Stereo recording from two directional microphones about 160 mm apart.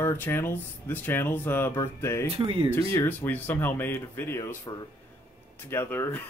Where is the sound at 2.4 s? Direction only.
35° right (ahead or behind).